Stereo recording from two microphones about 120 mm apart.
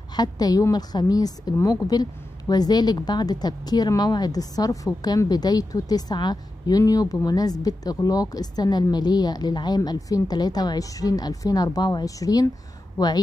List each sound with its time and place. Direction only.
0.1 s a woman's voice: 35° left (ahead or behind)